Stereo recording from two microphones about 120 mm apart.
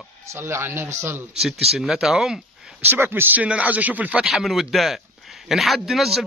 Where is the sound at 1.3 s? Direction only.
5° right (ahead or behind).